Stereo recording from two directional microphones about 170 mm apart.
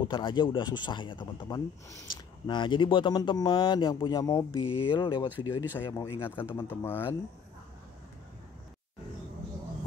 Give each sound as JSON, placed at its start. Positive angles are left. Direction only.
{"t": 0.1, "sound": "speech", "side_deg": 30}
{"t": 5.5, "sound": "speech", "side_deg": 15}